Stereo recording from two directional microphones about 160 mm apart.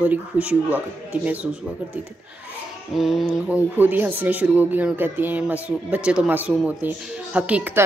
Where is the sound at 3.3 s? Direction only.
10° right (ahead or behind).